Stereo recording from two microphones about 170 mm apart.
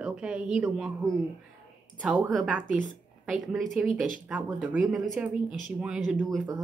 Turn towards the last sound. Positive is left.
turn(degrees=0)  # may be behind; listen again after turning